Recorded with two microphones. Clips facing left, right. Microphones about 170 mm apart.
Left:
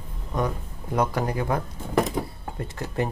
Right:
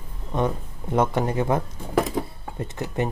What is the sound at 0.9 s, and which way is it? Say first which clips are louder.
Speech: right 3 dB; 25° right (ahead or behind).